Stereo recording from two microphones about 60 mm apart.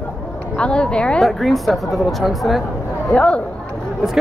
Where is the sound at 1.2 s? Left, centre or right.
Centre.